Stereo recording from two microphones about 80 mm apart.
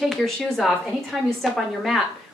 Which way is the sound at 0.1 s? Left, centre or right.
Centre.